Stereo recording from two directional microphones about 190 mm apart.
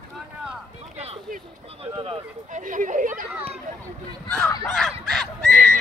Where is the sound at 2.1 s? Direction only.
40° right (ahead or behind).